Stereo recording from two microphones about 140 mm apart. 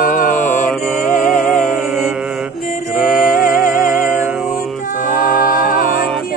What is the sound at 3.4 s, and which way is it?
Music, 75° left (ahead or behind).